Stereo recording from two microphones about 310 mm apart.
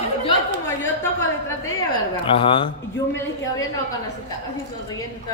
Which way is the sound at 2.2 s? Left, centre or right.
Centre.